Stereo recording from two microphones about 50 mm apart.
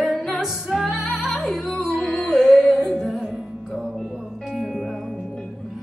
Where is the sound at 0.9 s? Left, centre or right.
Left.